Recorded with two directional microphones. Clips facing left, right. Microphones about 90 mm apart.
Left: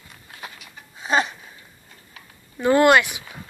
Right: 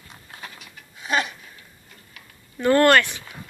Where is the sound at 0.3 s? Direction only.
30° right (ahead or behind).